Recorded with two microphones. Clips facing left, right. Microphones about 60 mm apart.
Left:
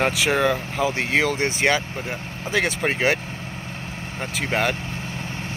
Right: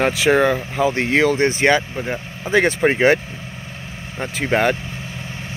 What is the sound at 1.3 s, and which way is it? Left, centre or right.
Speech, right.